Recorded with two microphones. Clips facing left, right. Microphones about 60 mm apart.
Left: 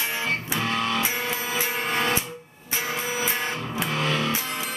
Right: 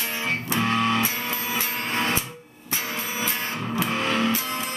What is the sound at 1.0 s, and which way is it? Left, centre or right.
Music, centre.